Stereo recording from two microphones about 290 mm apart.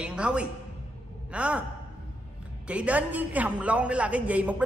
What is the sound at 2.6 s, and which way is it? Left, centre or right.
A man's voice, centre.